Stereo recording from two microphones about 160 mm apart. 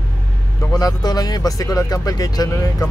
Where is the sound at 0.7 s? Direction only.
25° left (ahead or behind).